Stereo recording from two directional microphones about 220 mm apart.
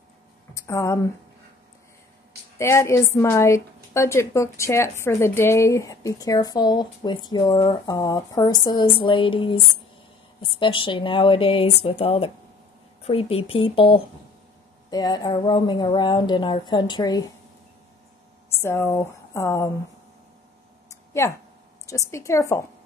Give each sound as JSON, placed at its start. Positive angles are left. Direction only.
{"t": 0.6, "sound": "speech", "side_deg": 15}
{"t": 2.6, "sound": "a woman's voice", "side_deg": 10}
{"t": 18.5, "sound": "speech", "side_deg": 10}
{"t": 20.9, "sound": "a sound", "side_deg": 10}
{"t": 21.8, "sound": "a woman's voice", "side_deg": 15}